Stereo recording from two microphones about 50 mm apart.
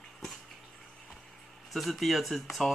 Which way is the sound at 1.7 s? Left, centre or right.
Centre.